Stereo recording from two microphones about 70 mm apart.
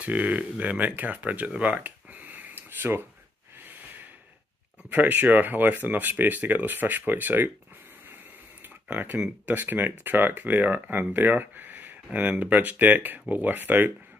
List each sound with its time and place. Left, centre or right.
0.0 s speech: right
1.5 s a sound: centre
3.6 s snort: right
4.8 s speech: right
8.6 s a sound: right
9.5 s speech: right